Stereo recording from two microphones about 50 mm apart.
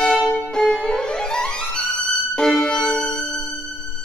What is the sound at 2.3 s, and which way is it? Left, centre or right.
Violin, centre.